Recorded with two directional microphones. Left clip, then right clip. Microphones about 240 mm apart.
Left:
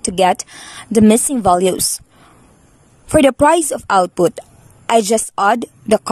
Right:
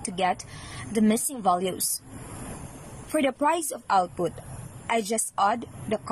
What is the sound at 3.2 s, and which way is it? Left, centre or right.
A woman's voice, left.